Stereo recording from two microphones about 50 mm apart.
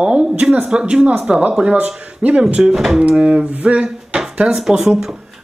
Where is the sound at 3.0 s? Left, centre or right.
Right.